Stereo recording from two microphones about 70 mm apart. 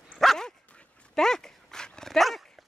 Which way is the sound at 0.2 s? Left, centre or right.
Centre.